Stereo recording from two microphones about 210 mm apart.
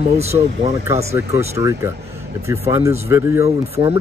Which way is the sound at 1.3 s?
15° right (ahead or behind).